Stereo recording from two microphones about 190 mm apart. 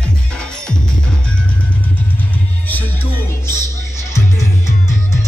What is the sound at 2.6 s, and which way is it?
Music, 10° left (ahead or behind).